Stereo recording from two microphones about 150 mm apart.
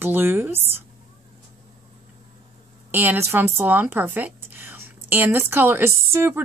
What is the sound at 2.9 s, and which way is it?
A woman's voice, 15° right (ahead or behind).